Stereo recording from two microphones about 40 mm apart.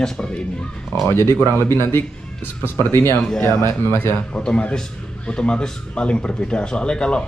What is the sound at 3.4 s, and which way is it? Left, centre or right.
Speech, left.